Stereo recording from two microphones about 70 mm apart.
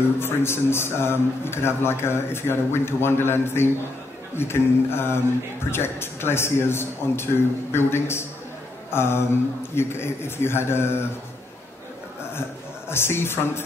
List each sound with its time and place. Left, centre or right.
0.2 s a man's voice: left
12.9 s a man's voice: left